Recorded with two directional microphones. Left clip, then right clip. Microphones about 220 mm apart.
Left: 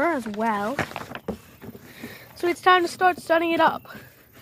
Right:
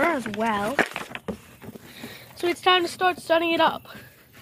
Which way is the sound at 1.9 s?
35° left (ahead or behind).